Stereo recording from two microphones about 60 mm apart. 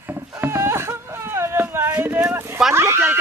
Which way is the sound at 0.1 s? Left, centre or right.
Right.